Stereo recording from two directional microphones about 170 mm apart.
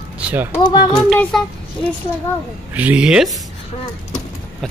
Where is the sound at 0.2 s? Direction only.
10° right (ahead or behind).